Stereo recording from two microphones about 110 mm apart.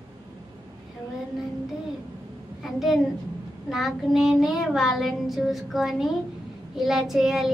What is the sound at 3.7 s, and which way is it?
Child singing, centre (ahead or behind).